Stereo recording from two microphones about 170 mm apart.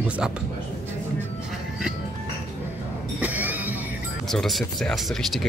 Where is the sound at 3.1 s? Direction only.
10° right (ahead or behind).